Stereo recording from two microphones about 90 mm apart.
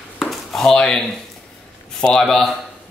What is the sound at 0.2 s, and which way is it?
Chop, 5° left (ahead or behind).